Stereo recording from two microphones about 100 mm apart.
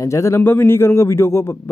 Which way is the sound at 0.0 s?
30° left (ahead or behind).